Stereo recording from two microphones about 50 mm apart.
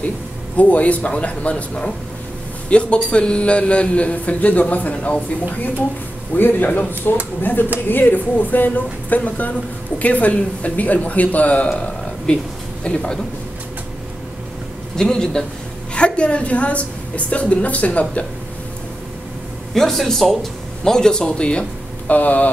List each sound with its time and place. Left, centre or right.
0.6 s a man's voice: left
6.3 s a woman's voice: left; by 13.2 s centre
15.0 s a man's voice: centre
19.7 s speech: centre
22.1 s a woman's voice: left